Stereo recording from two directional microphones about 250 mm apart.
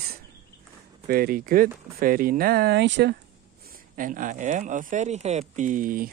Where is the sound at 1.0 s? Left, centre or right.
Right.